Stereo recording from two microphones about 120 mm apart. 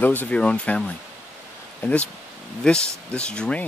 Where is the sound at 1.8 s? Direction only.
20° left (ahead or behind).